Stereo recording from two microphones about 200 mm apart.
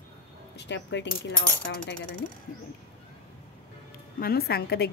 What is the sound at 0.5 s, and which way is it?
Speech, 60° left (ahead or behind).